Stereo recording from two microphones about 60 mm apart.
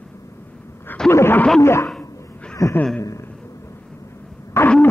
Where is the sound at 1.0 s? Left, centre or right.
Left.